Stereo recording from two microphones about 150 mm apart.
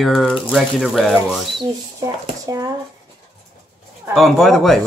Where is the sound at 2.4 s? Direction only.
25° right (ahead or behind).